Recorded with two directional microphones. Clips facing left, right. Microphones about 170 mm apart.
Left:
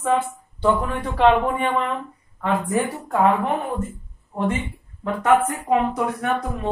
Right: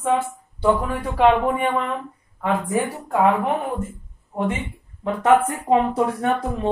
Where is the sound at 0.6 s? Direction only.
10° right (ahead or behind).